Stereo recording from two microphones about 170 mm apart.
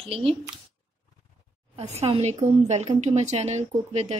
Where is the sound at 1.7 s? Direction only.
40° right (ahead or behind).